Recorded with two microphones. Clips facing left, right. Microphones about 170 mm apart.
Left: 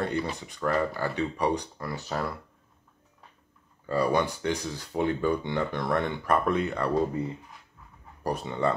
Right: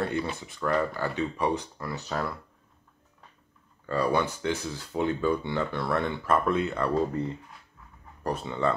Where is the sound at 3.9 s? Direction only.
15° left (ahead or behind).